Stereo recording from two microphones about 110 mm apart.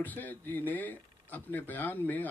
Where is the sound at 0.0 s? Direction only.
15° left (ahead or behind).